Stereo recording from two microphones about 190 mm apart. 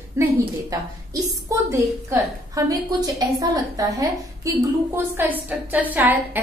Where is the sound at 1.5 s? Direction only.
15° right (ahead or behind).